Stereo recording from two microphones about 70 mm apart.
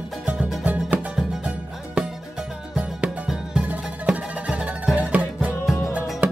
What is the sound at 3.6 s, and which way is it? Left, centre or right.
Music, centre.